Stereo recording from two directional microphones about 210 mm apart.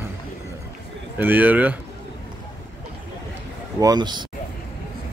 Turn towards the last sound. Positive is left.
turn(degrees=-20)  # may be behind; listen again after turning